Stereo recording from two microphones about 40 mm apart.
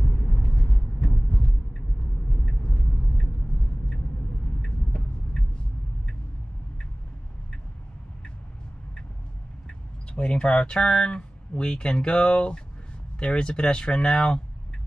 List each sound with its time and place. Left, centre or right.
10.1 s speech: left
10.8 s speech: centre
11.1 s speech: left